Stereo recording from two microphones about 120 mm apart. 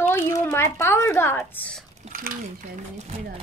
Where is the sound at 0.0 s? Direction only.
20° left (ahead or behind).